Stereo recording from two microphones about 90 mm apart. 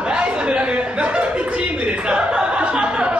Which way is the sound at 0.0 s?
10° right (ahead or behind).